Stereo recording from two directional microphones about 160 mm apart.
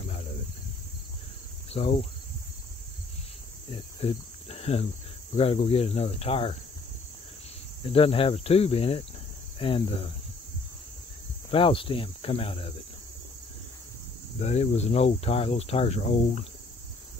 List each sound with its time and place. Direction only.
1.7 s speech: 40° left (ahead or behind)
3.7 s speech: 35° left (ahead or behind)
7.8 s speech: 35° left (ahead or behind)
11.5 s speech: 35° left (ahead or behind)
14.4 s speech: 40° left (ahead or behind)